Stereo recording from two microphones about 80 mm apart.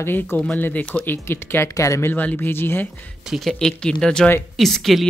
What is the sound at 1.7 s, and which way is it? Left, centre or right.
Speech, left.